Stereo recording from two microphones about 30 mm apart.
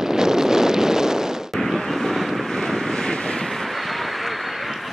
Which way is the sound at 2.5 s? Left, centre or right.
Centre.